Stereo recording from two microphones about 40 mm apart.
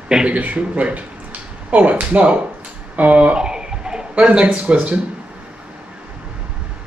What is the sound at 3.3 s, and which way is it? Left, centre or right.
Speech, centre.